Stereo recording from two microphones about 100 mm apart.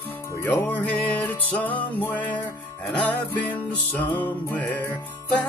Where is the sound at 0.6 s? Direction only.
20° left (ahead or behind).